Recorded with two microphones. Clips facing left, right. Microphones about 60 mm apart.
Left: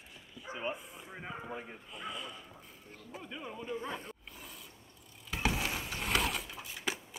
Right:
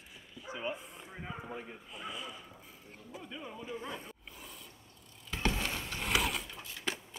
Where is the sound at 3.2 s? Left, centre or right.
Centre.